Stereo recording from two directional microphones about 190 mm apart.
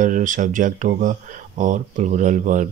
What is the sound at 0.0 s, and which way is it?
Speech, 40° right (ahead or behind).